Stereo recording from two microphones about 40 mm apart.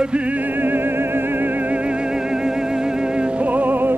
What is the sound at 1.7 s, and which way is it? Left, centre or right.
Music, right.